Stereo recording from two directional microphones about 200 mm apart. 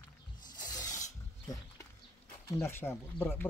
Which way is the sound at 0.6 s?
15° left (ahead or behind).